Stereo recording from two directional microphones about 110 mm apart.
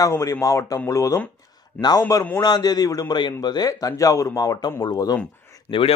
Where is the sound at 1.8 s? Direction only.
15° left (ahead or behind).